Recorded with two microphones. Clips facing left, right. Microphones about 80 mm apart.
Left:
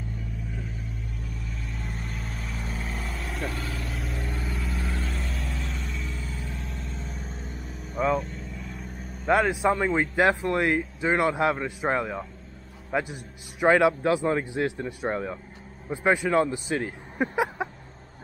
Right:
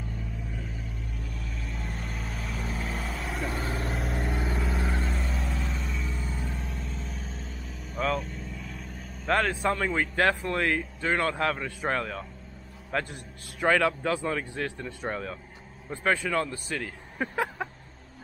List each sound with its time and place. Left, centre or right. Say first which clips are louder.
1.5 s vehicle: even; centre
3.5 s vehicle: right 3 dB; right
4.6 s vehicle: right 2 dB; centre
10.5 s a man's voice: left 3 dB; centre